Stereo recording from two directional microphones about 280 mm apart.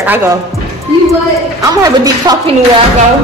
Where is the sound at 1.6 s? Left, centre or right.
Centre.